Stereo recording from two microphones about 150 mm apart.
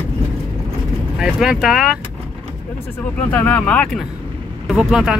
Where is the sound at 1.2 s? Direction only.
5° right (ahead or behind).